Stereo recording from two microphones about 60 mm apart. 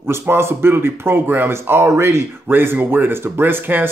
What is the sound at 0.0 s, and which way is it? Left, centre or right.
Speech, right.